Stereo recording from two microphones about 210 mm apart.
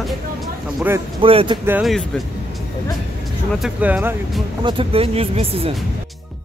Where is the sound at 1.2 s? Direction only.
25° right (ahead or behind).